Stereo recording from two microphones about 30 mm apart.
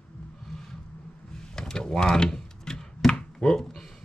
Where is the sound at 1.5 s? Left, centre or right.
Left.